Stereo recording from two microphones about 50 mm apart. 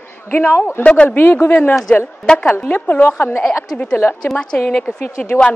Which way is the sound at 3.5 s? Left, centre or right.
Left.